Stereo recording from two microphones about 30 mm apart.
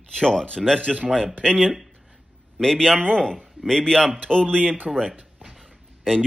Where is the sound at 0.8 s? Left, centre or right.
Right.